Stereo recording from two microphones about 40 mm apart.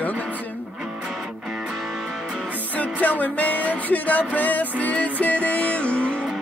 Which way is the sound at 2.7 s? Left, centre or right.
Left.